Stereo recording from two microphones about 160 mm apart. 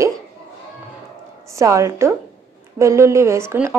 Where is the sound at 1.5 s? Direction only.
20° right (ahead or behind).